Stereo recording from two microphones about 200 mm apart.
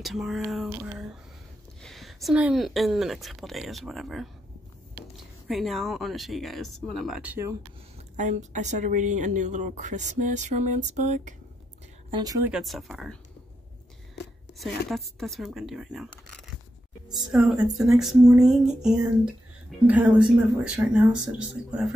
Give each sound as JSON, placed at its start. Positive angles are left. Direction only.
{"t": 0.0, "sound": "speech", "side_deg": 0}
{"t": 8.2, "sound": "speech", "side_deg": -35}
{"t": 12.1, "sound": "speech", "side_deg": -20}
{"t": 12.4, "sound": "speech", "side_deg": 0}
{"t": 14.6, "sound": "speech", "side_deg": 0}